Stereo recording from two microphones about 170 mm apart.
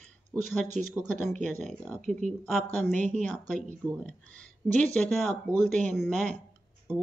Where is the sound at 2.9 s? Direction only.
45° right (ahead or behind).